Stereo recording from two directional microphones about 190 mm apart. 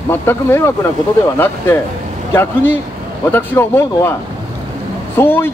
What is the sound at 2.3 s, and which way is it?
Speech, 10° left (ahead or behind).